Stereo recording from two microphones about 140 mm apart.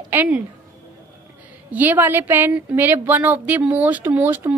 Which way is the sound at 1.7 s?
10° right (ahead or behind).